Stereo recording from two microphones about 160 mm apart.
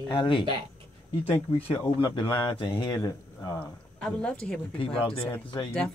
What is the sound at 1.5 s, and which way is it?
Speech, 35° left (ahead or behind).